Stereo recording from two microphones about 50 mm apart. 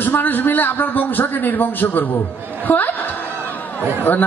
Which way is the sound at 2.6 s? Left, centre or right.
Left.